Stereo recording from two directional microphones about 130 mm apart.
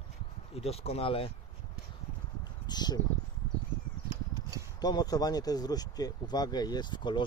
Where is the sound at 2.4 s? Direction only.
35° left (ahead or behind).